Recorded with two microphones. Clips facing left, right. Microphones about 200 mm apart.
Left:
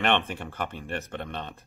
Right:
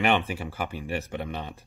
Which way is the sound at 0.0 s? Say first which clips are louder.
Right 1 dB; 5° right (ahead or behind).